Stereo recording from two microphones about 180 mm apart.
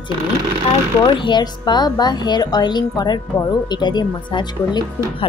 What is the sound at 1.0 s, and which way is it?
A woman's voice, 25° left (ahead or behind).